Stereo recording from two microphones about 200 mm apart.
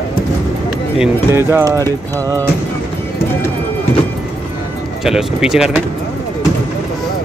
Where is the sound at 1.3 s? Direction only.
10° right (ahead or behind).